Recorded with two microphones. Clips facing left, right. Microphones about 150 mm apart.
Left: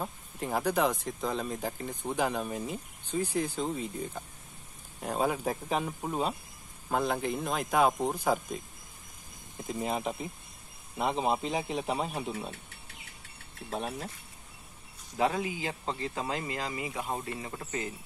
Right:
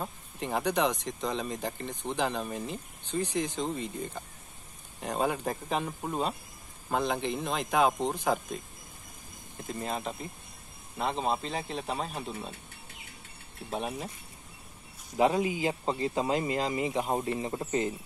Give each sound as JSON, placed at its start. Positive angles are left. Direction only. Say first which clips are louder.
{"t": 0.0, "sound": "speech", "louder": "even", "side_deg": 5}
{"t": 13.7, "sound": "speech", "louder": "right 1 dB", "side_deg": -10}
{"t": 15.1, "sound": "speech", "louder": "right 4 dB", "side_deg": -20}